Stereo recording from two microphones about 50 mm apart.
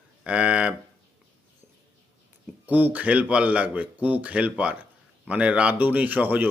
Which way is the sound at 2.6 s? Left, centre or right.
Right.